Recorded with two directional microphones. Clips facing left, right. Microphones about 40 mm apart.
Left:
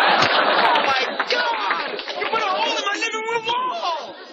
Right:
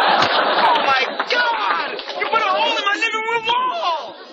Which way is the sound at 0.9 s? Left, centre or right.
Right.